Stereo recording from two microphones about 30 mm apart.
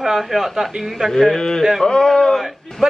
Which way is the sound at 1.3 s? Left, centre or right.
Left.